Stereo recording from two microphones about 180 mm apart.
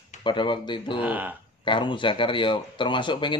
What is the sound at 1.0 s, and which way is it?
Speech, 10° right (ahead or behind).